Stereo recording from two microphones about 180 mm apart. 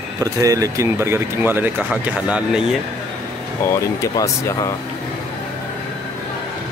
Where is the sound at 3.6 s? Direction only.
15° left (ahead or behind).